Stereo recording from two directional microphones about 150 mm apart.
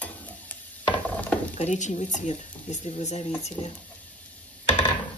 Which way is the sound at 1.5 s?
55° left (ahead or behind).